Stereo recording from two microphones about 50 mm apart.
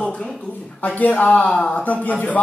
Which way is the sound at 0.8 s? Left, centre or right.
Left.